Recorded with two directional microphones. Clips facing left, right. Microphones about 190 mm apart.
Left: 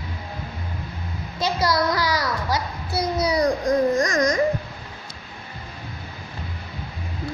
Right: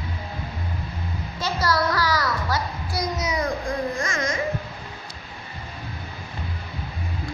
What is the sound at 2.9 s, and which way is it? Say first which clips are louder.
Babbling: left 5 dB; 30° left (ahead or behind).